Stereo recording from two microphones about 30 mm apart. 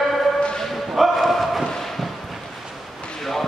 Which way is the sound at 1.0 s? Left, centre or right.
Centre.